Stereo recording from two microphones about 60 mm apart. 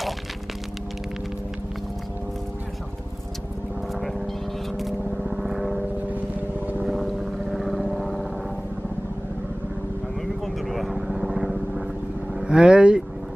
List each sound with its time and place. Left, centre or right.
5.3 s vehicle: centre
6.0 s vehicle: right
6.9 s vehicle: centre
10.4 s vehicle: centre